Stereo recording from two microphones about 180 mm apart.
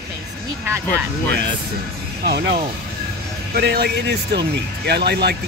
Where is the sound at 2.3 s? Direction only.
65° right (ahead or behind).